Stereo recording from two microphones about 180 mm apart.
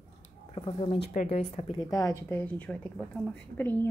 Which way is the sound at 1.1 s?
40° left (ahead or behind).